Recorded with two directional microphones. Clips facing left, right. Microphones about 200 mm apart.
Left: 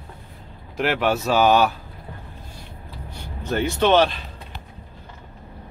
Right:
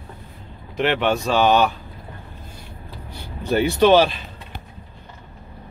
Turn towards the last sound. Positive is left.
turn(degrees=-5)  # may be behind; listen again after turning